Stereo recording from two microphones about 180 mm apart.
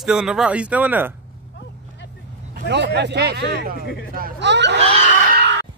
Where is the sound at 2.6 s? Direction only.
70° right (ahead or behind).